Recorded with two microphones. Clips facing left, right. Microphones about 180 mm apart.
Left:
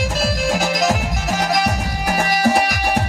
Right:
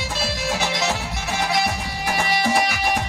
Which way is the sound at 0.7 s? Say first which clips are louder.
Left 6 dB; 45° left (ahead or behind).